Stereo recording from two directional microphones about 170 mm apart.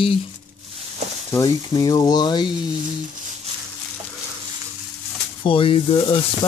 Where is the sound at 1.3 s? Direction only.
20° left (ahead or behind).